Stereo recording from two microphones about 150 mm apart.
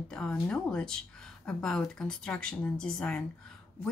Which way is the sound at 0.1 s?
5° left (ahead or behind).